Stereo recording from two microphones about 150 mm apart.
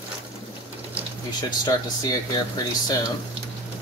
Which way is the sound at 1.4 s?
25° left (ahead or behind).